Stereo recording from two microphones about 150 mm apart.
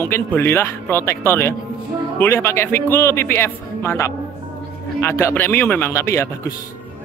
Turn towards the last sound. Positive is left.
turn(degrees=15)  # may be behind; listen again after turning